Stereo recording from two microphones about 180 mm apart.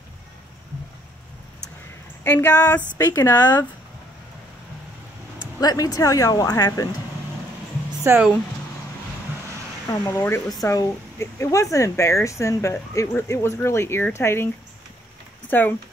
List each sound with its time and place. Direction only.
2.2 s speech: 10° left (ahead or behind)
5.6 s speech: 20° left (ahead or behind)
8.0 s speech: 15° right (ahead or behind)
9.8 s speech: 15° left (ahead or behind)
15.5 s speech: 10° left (ahead or behind)